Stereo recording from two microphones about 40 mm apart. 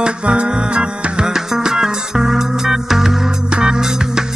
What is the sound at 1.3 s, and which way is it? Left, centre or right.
Music, centre.